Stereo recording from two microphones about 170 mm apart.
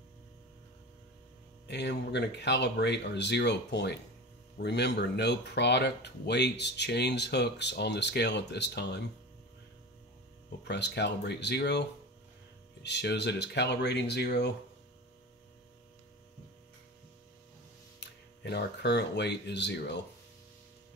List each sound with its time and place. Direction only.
1.7 s speech: 85° left
10.6 s speech: 80° left
12.8 s speech: 85° left
18.0 s speech: 85° left